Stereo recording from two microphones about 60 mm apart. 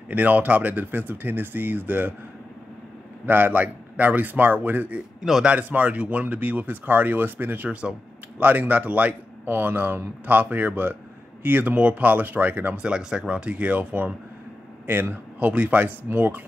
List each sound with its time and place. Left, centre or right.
0.1 s speech: right
3.3 s speech: right
5.2 s a man's voice: centre
5.5 s speech: right
12.8 s speech: centre
16.1 s speech: right